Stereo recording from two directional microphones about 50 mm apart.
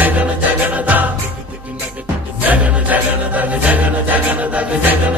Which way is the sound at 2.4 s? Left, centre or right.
Right.